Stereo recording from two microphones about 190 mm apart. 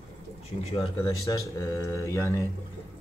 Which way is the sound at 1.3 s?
15° left (ahead or behind).